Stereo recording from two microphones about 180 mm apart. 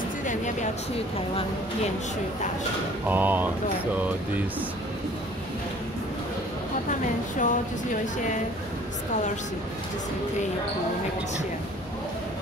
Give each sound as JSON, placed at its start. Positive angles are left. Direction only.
{"t": 3.1, "sound": "speech", "side_deg": -10}
{"t": 6.9, "sound": "a woman's voice", "side_deg": 45}